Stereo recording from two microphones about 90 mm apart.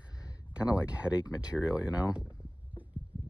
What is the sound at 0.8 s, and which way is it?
Speech, 15° right (ahead or behind).